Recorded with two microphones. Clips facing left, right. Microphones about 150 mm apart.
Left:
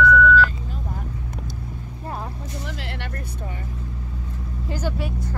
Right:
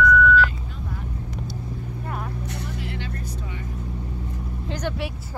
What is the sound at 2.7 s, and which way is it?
Vehicle, 75° left (ahead or behind).